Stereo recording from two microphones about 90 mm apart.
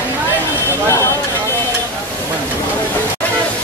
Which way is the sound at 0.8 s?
30° left (ahead or behind).